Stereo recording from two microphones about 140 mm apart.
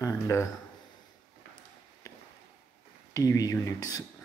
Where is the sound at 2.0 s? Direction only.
25° left (ahead or behind).